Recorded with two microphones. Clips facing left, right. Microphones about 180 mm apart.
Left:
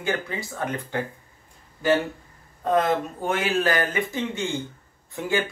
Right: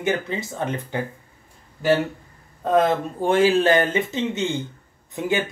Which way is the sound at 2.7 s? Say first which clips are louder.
Right 4 dB; 30° right (ahead or behind).